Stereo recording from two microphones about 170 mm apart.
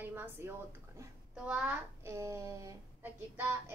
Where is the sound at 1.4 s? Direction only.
5° right (ahead or behind).